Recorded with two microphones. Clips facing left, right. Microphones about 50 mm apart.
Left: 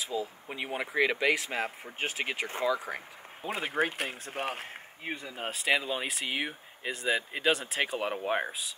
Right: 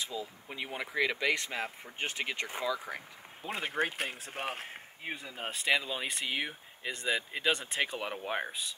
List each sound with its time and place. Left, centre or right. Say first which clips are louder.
0.1 s speech: left 5 dB; left
1.1 s speech: left 3 dB; centre
2.9 s speech: left 3 dB; left
3.4 s a man's voice: left 3 dB; centre
6.9 s a man's voice: left 3 dB; centre
7.2 s speech: left 3 dB; centre
7.5 s a man's voice: left 2 dB; centre
8.0 s speech: left 5 dB; centre